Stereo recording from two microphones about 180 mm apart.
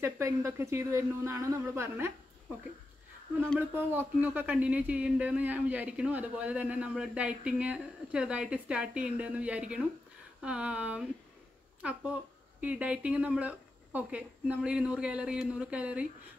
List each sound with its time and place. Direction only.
0.0 s speech: 15° right (ahead or behind)
3.5 s speech: 10° right (ahead or behind)